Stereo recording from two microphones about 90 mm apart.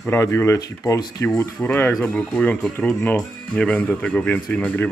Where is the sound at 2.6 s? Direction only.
5° left (ahead or behind).